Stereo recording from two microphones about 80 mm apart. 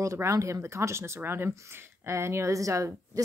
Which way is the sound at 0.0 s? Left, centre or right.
Right.